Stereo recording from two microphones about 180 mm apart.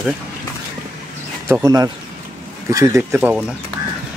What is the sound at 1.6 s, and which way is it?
Speech, 20° right (ahead or behind).